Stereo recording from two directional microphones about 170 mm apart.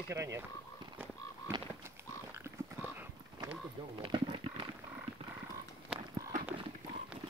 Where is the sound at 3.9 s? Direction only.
30° right (ahead or behind).